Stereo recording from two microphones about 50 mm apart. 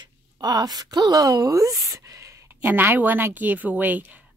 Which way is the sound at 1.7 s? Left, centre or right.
Right.